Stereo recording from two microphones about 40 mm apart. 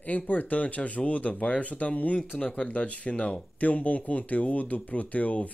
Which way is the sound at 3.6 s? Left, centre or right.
Left.